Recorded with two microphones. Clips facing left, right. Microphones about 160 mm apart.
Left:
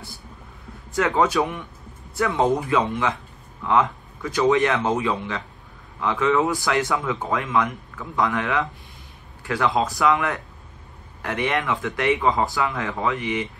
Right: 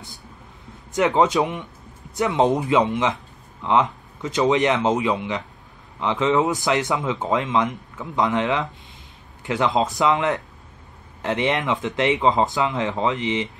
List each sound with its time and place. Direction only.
0.9 s speech: 20° right (ahead or behind)